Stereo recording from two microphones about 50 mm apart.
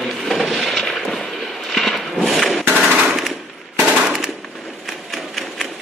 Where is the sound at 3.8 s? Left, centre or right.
Right.